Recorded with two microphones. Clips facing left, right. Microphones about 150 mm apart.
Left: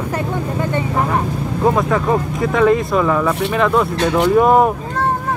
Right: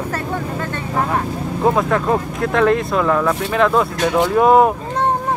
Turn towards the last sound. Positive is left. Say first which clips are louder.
# even
turn(degrees=0)  # may be behind; listen again after turning